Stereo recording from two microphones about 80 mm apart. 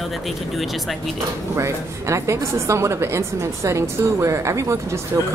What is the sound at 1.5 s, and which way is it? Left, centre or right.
A woman's voice, right.